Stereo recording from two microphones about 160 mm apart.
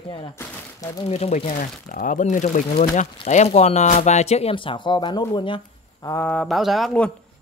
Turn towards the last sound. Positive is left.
turn(degrees=5)  # may be behind; listen again after turning